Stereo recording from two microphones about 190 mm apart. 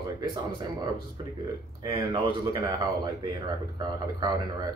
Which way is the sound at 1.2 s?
25° right (ahead or behind).